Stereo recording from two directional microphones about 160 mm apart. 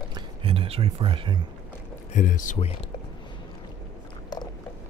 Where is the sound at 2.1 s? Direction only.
55° left (ahead or behind).